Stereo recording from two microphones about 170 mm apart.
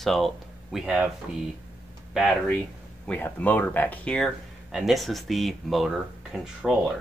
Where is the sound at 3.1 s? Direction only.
10° left (ahead or behind).